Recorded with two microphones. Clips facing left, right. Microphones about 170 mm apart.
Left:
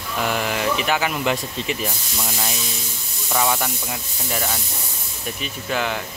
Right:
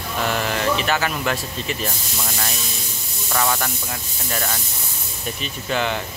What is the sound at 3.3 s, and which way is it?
Speech, 10° left (ahead or behind).